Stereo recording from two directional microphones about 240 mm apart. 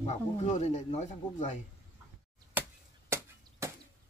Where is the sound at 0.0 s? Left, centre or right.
Left.